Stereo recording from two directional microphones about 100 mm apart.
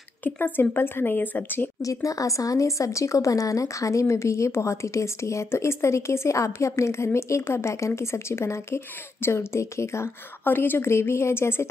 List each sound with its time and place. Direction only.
0.2 s speech: 20° left (ahead or behind)
1.8 s speech: 35° left (ahead or behind)